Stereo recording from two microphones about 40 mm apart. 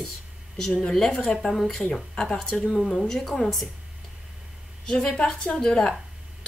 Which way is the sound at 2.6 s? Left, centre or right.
Centre.